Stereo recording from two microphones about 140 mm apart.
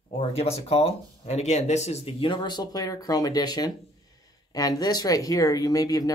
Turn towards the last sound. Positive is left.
turn(degrees=25)  # may be behind; listen again after turning